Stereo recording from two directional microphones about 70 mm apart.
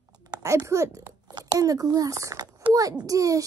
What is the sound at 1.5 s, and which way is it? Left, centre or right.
Speech, right.